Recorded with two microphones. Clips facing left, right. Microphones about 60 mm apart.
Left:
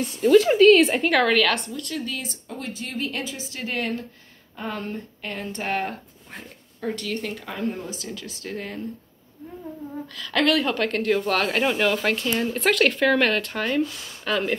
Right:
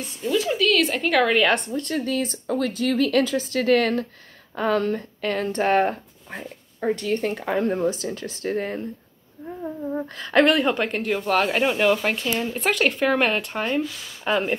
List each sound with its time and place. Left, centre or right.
0.2 s speech: left
0.6 s a woman's voice: left
1.0 s a woman's voice: centre
1.5 s speech: right
6.8 s speech: right
7.4 s speech: right
7.9 s speech: right